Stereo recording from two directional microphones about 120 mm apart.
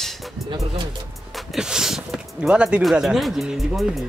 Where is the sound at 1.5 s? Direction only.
5° right (ahead or behind).